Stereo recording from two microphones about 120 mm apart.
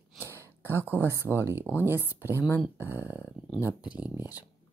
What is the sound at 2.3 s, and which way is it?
Speech, 20° left (ahead or behind).